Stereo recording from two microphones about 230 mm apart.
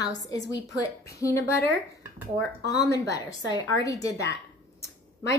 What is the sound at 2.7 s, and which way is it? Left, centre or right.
A woman's voice, centre.